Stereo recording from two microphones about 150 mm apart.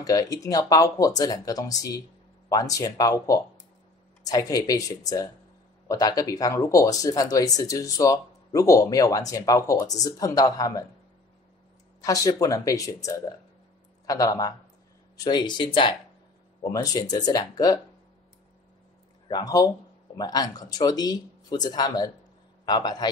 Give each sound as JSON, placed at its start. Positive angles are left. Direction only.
{"t": 0.0, "sound": "speech", "side_deg": 25}
{"t": 12.0, "sound": "speech", "side_deg": 20}
{"t": 19.2, "sound": "speech", "side_deg": 25}